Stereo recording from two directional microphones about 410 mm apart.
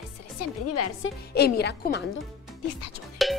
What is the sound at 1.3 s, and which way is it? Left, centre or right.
Speech, left.